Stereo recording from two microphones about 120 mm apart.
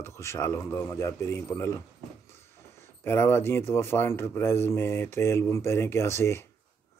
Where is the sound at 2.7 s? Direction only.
20° left (ahead or behind).